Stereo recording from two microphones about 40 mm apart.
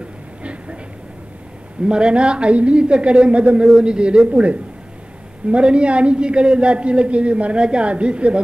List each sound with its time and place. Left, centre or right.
0.4 s a sound: right
1.9 s a man's voice: right
4.3 s a man's voice: right